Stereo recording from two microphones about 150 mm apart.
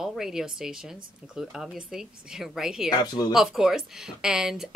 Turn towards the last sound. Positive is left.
turn(degrees=-5)  # may be behind; listen again after turning